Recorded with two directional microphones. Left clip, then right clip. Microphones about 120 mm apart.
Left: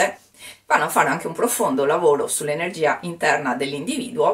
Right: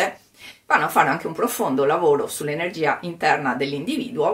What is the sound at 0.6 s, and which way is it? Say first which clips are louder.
Speech: even; 35° right (ahead or behind).